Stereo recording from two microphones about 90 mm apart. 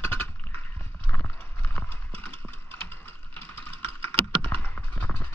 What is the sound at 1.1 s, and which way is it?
Clip-clop, 20° left (ahead or behind).